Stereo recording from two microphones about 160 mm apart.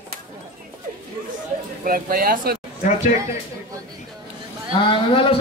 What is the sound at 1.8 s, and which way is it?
Speech, 65° right (ahead or behind).